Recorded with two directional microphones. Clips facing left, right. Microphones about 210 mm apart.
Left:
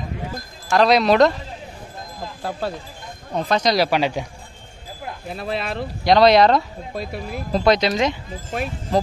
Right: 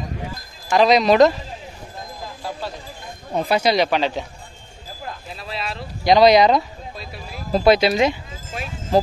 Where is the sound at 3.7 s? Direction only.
10° left (ahead or behind).